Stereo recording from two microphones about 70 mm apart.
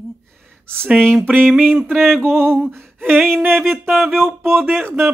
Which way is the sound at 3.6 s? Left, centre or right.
Centre.